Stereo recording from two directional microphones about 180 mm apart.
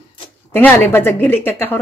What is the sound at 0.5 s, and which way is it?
A woman's voice, 10° left (ahead or behind).